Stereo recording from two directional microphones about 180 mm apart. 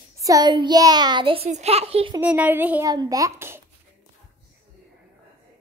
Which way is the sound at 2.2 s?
10° right (ahead or behind).